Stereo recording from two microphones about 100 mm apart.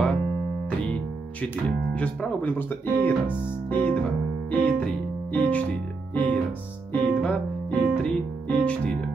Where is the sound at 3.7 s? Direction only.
15° left (ahead or behind).